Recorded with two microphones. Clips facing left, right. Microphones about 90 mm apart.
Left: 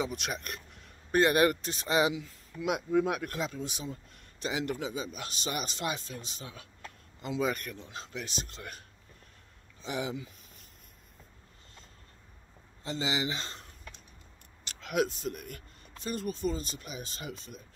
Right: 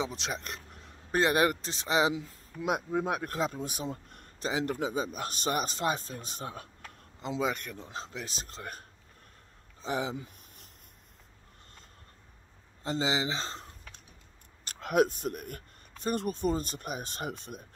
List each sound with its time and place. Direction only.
0.0 s speech: 25° right (ahead or behind)
2.1 s speech: 35° right (ahead or behind)
3.8 s a sound: 55° right (ahead or behind)
4.4 s speech: 35° right (ahead or behind)
7.2 s speech: 25° right (ahead or behind)
7.7 s speech: 35° right (ahead or behind)
12.8 s speech: 35° right (ahead or behind)
14.7 s speech: 45° right (ahead or behind)